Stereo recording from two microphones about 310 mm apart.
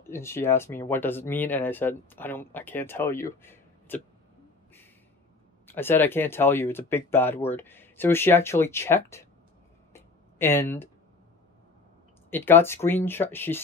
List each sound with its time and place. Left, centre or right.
0.1 s speech: centre
5.7 s speech: centre
9.9 s a sound: centre
12.3 s speech: centre